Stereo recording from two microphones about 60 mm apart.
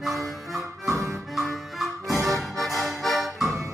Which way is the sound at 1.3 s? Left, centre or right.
Centre.